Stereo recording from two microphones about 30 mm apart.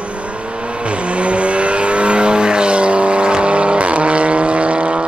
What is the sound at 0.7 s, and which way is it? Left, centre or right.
Vehicle, right.